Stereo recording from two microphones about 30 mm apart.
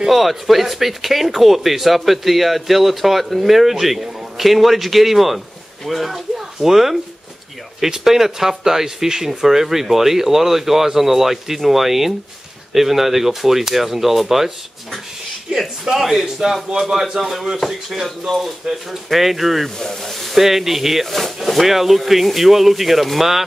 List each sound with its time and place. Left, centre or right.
0.1 s speech: centre
8.0 s speech: centre
16.0 s speech: centre
18.6 s speech: right
19.1 s speech: centre
21.1 s speech: centre